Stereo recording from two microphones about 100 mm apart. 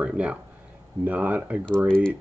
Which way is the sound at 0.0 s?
10° right (ahead or behind).